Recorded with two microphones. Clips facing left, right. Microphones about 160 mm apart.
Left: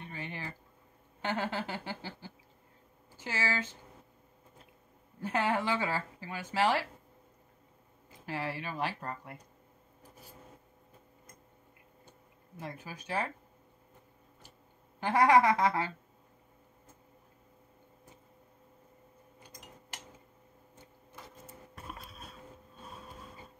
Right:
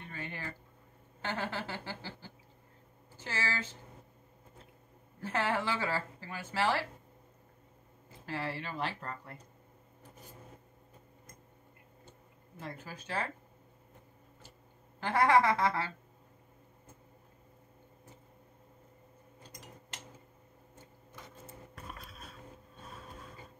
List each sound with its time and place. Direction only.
0.1 s a sound: 20° left (ahead or behind)
1.2 s speech: 15° left (ahead or behind)
5.2 s speech: 15° left (ahead or behind)
8.1 s speech: 15° left (ahead or behind)
12.5 s speech: 15° left (ahead or behind)
15.0 s speech: 15° left (ahead or behind)